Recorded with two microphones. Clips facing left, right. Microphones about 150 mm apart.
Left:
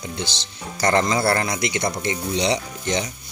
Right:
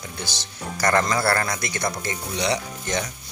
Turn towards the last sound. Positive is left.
turn(degrees=25)  # may be behind; listen again after turning